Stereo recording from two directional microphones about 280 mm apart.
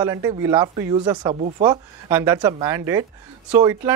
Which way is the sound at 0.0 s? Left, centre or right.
Centre.